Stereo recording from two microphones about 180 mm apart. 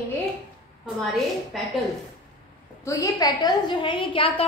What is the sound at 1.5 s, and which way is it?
Speech, centre (ahead or behind).